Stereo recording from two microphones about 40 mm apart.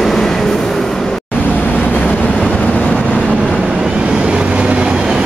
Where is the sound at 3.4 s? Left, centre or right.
Centre.